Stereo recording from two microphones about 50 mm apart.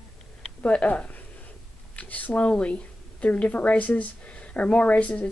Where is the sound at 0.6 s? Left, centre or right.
Left.